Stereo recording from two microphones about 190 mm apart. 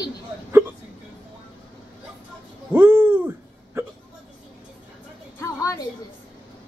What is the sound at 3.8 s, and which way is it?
Hiccup, 10° right (ahead or behind).